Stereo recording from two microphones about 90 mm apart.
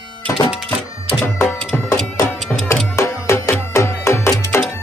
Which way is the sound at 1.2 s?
30° left (ahead or behind).